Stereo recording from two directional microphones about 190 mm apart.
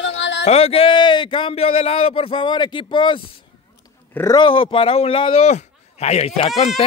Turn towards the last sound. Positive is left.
turn(degrees=35)  # may be behind; listen again after turning